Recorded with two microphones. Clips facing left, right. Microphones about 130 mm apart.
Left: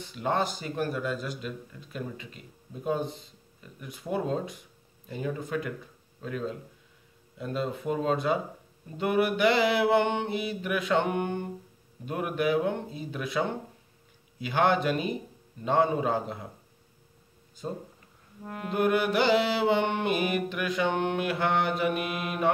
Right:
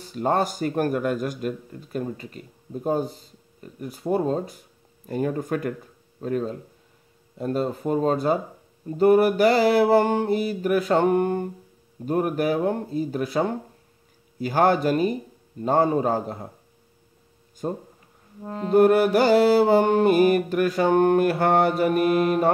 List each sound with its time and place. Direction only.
0.0 s a man's voice: 45° right (ahead or behind)
7.3 s music: 40° right (ahead or behind)
17.6 s a man's voice: 55° right (ahead or behind)
18.4 s music: 30° right (ahead or behind)
18.7 s music: 40° right (ahead or behind)